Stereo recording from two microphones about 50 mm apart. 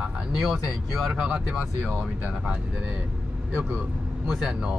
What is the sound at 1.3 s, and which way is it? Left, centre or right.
Speech, centre.